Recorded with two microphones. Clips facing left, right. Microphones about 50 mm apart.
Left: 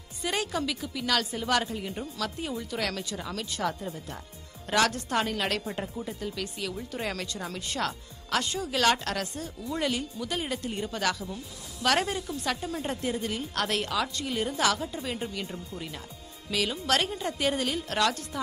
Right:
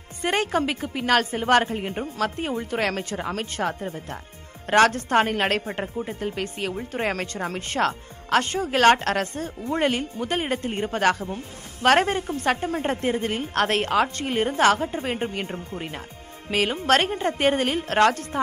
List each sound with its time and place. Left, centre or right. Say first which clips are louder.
0.2 s a woman's voice: right 7 dB; right